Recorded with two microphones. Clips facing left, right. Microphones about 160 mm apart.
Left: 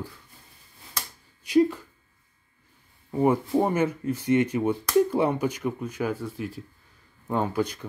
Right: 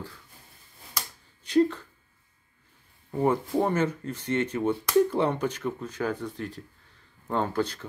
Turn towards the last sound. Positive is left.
turn(degrees=10)  # may be behind; listen again after turning